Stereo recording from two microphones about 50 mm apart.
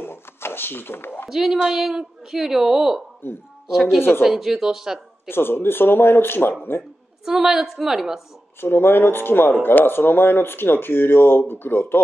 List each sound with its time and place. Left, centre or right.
0.0 s a sound: left
1.3 s a woman's voice: centre
3.2 s speech: left
3.6 s a woman's voice: centre
5.3 s speech: left
7.2 s a woman's voice: centre
8.5 s speech: left